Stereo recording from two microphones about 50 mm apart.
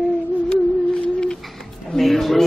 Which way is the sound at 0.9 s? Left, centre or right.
Centre.